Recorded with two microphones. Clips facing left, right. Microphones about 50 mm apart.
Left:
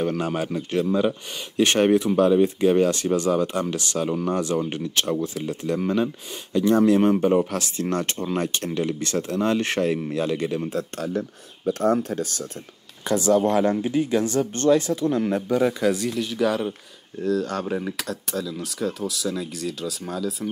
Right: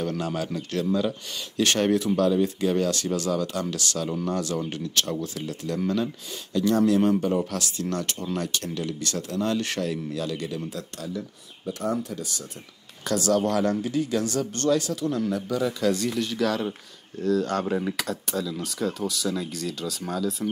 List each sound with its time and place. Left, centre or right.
0.0 s speech: left
13.1 s speech: left
16.1 s speech: centre
17.2 s speech: centre